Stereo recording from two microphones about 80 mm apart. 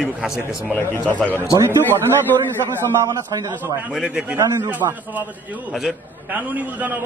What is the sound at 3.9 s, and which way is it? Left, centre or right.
Speech, centre.